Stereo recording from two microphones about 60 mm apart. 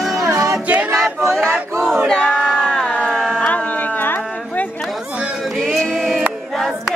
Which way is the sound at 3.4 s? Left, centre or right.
Left.